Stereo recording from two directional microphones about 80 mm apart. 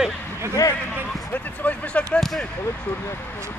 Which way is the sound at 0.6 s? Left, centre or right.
Left.